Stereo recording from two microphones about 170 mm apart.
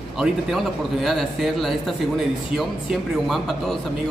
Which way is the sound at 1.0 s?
Centre (ahead or behind).